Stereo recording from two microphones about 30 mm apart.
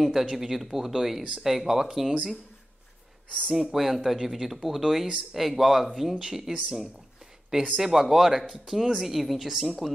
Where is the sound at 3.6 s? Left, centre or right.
Centre.